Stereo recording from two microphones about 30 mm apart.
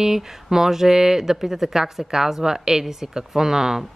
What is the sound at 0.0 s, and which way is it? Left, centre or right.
Speech, centre.